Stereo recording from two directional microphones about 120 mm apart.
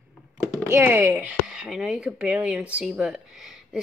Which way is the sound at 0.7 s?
20° right (ahead or behind).